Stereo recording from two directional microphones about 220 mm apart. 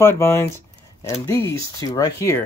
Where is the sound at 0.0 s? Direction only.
10° left (ahead or behind).